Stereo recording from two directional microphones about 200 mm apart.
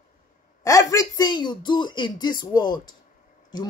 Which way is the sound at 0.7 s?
15° left (ahead or behind).